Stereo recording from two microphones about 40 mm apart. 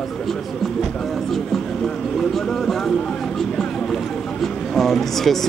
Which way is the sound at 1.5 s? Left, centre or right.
Centre.